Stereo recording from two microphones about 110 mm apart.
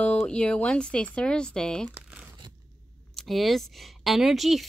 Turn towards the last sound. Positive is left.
turn(degrees=0)  # may be behind; listen again after turning